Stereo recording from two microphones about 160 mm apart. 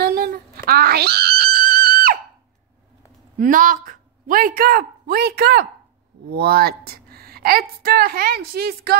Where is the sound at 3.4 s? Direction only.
55° right (ahead or behind); by 8.9 s 75° right (ahead or behind).